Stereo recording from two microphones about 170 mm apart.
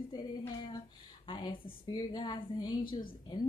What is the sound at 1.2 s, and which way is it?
Speech, 30° left (ahead or behind).